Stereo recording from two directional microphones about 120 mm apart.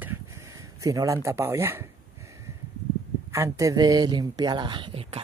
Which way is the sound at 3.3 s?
25° right (ahead or behind).